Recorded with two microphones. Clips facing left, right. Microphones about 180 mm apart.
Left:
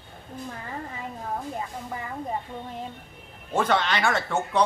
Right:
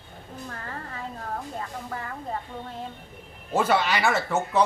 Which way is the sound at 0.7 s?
15° left (ahead or behind).